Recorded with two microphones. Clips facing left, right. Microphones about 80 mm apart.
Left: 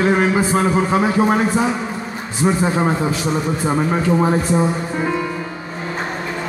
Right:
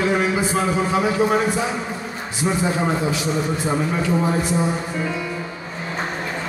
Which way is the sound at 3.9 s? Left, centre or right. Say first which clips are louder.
Left 4 dB; left.